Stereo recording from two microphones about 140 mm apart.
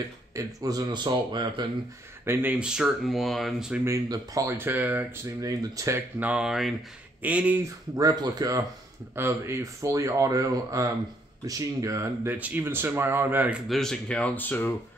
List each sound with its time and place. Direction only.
0.4 s speech: 25° right (ahead or behind)
2.2 s speech: 15° right (ahead or behind)
3.8 s speech: 25° right (ahead or behind)
5.4 s speech: 25° right (ahead or behind); by 7.6 s 10° right (ahead or behind)
7.9 s speech: 30° right (ahead or behind); by 13.6 s 15° right (ahead or behind)
13.7 s speech: 5° left (ahead or behind)